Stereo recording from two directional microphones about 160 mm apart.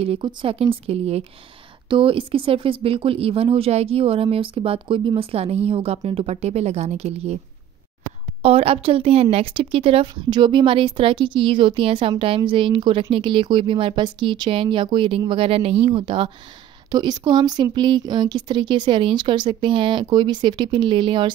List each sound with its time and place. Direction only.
0.0 s speech: 35° right (ahead or behind)
8.4 s speech: 40° right (ahead or behind)